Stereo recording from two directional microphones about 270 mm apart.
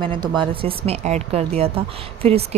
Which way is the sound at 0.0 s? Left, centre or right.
Centre.